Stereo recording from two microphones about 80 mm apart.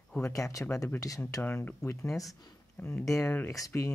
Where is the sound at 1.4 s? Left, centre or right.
Left.